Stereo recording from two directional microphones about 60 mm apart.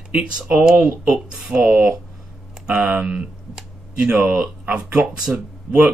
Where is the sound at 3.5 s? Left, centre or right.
Centre.